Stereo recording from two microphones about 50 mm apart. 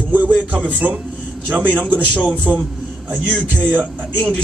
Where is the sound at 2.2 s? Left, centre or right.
Right.